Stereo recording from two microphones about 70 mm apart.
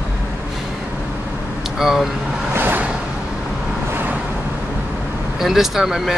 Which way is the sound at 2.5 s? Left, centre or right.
Right.